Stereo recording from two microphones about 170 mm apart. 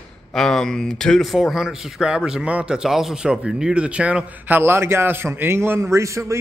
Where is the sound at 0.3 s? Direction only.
5° left (ahead or behind).